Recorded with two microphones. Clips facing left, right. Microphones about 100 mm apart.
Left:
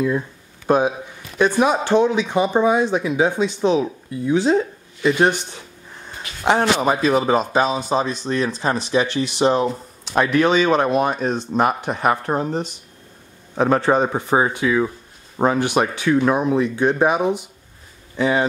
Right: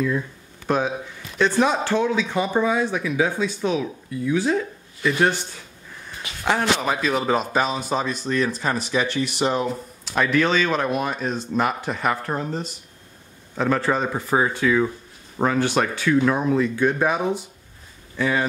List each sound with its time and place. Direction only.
0.7 s a man's voice: 15° left (ahead or behind)
7.2 s speech: 5° left (ahead or behind)
7.9 s speech: 25° left (ahead or behind)
10.2 s speech: 15° left (ahead or behind)
10.8 s speech: 30° left (ahead or behind)
11.1 s speech: 40° left (ahead or behind); by 18.4 s 20° left (ahead or behind)